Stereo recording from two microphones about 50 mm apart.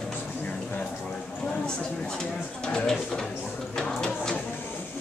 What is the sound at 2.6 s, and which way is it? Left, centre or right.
Speech, centre.